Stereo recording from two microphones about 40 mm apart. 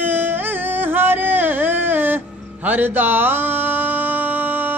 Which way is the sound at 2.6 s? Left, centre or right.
Right.